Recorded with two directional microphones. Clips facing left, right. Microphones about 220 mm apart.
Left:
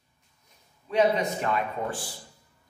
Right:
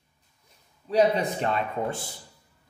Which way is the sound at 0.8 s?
30° right (ahead or behind).